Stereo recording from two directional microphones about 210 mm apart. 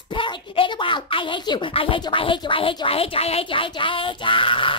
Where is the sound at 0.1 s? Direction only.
25° left (ahead or behind).